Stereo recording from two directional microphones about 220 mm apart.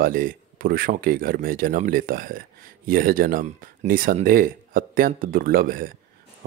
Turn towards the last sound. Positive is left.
turn(degrees=-40)  # may be behind; listen again after turning